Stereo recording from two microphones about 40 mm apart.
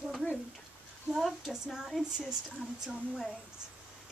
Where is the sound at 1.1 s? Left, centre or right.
Centre.